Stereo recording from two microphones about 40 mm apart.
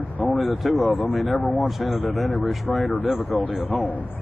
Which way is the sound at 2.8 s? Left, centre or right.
Left.